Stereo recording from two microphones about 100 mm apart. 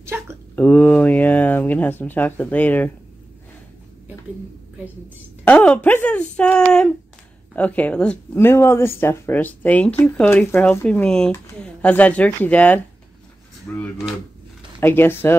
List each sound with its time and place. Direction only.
0.0 s a sound: 25° right (ahead or behind)
0.6 s speech: 15° left (ahead or behind)
5.4 s speech: 15° left (ahead or behind)
8.4 s speech: 25° left (ahead or behind)